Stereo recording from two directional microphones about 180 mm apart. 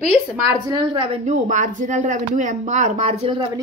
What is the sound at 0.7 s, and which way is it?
Speech, 25° right (ahead or behind).